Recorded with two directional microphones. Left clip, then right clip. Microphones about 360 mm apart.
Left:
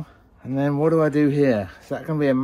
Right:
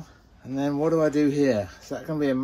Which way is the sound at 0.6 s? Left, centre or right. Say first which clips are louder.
Left 3 dB; centre.